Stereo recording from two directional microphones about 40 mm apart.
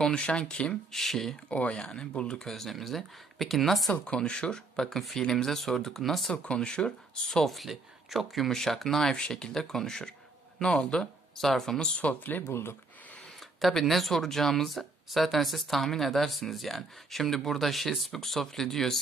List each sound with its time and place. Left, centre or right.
0.2 s speech: left
0.9 s speech: centre
1.5 s speech: left
2.0 s speech: left
2.5 s speech: centre
4.0 s speech: left
4.7 s speech: centre
6.3 s speech: left
7.4 s speech: centre
11.3 s speech: centre
12.2 s speech: left
12.4 s speech: left
13.8 s speech: centre